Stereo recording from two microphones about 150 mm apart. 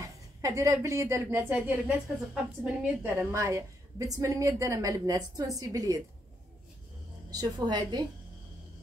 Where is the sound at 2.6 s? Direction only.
10° right (ahead or behind).